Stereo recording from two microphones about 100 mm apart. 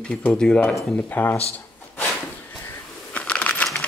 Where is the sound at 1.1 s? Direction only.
20° left (ahead or behind).